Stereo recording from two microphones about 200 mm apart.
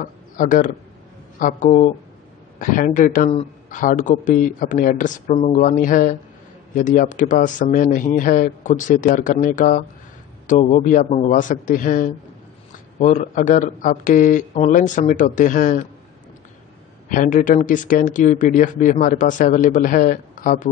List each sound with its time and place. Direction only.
0.0 s speech: 40° left (ahead or behind)
17.1 s speech: 40° left (ahead or behind)